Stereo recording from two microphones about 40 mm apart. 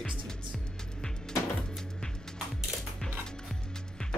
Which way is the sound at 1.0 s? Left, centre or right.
Centre.